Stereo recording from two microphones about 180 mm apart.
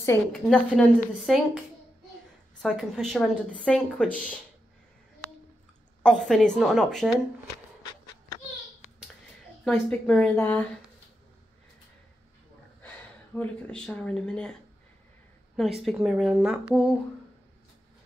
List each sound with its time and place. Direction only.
0.0 s speech: 15° left (ahead or behind)
0.8 s a woman's voice: centre (ahead or behind)
2.6 s a woman's voice: centre (ahead or behind)
6.0 s a woman's voice: 5° left (ahead or behind)
9.7 s speech: 5° left (ahead or behind)
12.8 s a woman's voice: 10° left (ahead or behind)